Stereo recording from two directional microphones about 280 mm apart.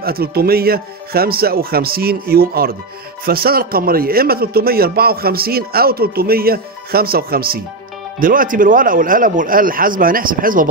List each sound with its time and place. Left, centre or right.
0.0 s a man's voice: right